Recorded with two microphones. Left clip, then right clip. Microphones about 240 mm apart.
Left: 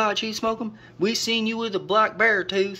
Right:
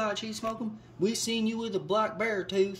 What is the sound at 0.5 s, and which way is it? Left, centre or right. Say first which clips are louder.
Speech: left 6 dB; centre.